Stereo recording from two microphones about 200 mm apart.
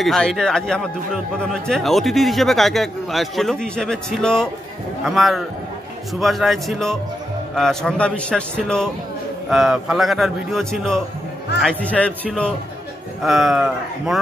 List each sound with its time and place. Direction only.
0.0 s a man's voice: centre (ahead or behind)